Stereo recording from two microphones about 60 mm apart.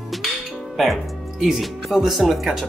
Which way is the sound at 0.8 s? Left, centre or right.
Centre.